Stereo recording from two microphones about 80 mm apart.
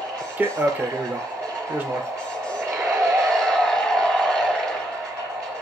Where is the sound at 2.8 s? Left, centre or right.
Centre.